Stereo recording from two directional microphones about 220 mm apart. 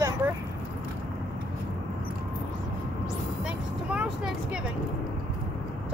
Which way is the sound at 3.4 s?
5° right (ahead or behind).